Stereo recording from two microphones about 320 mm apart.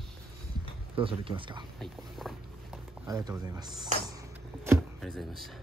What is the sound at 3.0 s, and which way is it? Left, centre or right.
Speech, centre.